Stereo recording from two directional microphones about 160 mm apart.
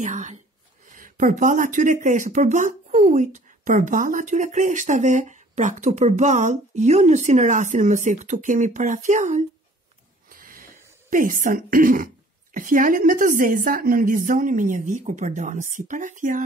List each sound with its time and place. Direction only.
0.0 s speech: 50° right (ahead or behind)
10.3 s a sound: 60° right (ahead or behind)
11.1 s a woman's voice: 55° right (ahead or behind)